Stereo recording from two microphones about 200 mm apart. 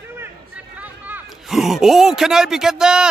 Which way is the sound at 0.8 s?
10° right (ahead or behind).